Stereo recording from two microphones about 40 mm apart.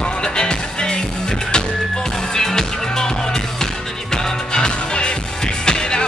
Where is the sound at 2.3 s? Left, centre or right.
Centre.